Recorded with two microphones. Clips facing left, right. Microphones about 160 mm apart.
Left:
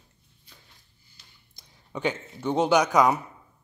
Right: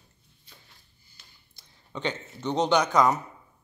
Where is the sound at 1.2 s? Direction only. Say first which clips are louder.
Right 1 dB; 50° right (ahead or behind).